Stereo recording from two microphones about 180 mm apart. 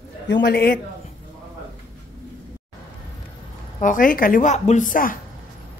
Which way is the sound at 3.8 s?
45° left (ahead or behind).